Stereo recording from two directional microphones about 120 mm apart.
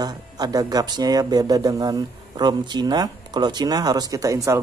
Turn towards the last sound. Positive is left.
turn(degrees=-25)  # may be behind; listen again after turning